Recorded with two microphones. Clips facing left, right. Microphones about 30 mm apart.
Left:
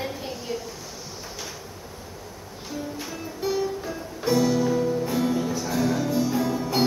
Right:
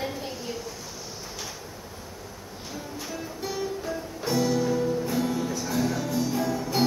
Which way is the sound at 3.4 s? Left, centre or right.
Centre.